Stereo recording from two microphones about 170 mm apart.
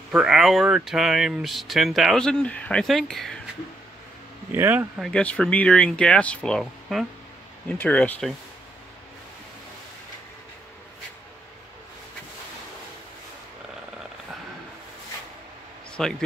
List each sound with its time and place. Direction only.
0.1 s speech: 5° right (ahead or behind)
4.5 s speech: 10° right (ahead or behind)
5.0 s speech: 5° left (ahead or behind)
7.6 s speech: 10° left (ahead or behind)
16.0 s speech: 5° left (ahead or behind)